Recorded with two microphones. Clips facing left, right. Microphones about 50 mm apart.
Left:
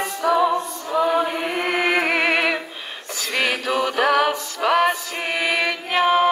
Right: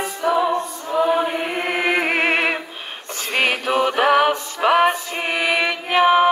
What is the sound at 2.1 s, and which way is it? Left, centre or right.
Music, right.